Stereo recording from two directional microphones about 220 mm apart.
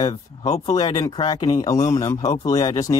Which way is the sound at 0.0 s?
15° left (ahead or behind).